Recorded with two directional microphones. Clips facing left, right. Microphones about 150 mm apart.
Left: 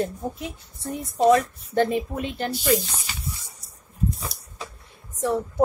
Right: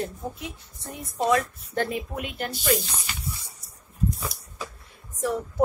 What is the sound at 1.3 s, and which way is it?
A woman's voice, 25° left (ahead or behind).